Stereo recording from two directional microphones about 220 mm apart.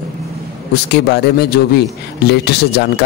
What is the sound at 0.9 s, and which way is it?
A man's voice, 50° left (ahead or behind).